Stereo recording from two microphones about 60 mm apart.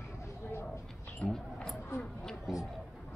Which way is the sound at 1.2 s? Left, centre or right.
Left.